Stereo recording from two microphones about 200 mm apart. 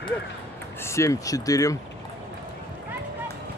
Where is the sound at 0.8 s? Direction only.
15° left (ahead or behind).